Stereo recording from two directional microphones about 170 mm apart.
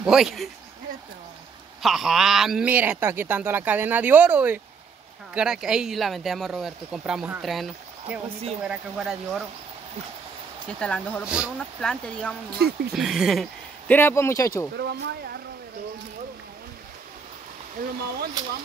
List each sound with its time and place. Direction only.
0.0 s speech: centre (ahead or behind)
1.8 s a man's voice: centre (ahead or behind)
10.7 s speech: 5° left (ahead or behind)
11.2 s speech: 5° right (ahead or behind)
11.9 s speech: 5° left (ahead or behind)
12.5 s speech: 70° right (ahead or behind)
12.9 s speech: centre (ahead or behind)
13.9 s speech: 15° left (ahead or behind)
14.8 s speech: 80° right